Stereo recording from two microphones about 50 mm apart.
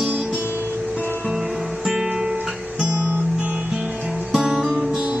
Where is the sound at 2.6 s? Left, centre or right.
Right.